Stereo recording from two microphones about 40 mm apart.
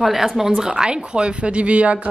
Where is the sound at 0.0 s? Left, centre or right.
Centre.